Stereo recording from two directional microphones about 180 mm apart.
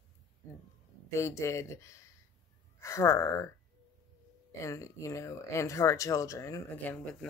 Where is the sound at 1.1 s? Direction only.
15° left (ahead or behind).